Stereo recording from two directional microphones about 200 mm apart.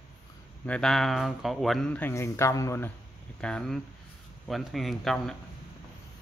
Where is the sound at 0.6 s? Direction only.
5° left (ahead or behind).